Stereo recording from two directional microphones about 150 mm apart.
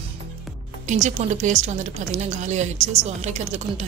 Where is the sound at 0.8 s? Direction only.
55° right (ahead or behind).